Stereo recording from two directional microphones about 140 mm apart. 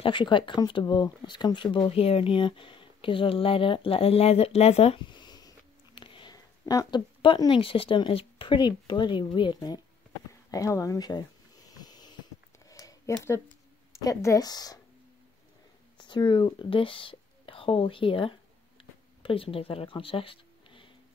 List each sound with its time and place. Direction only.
0.0 s speech: 35° left (ahead or behind)
5.0 s a sound: 35° left (ahead or behind)
5.9 s speech: 35° left (ahead or behind)
10.5 s a sound: 25° left (ahead or behind)
14.0 s speech: 25° left (ahead or behind)
16.0 s speech: 35° left (ahead or behind)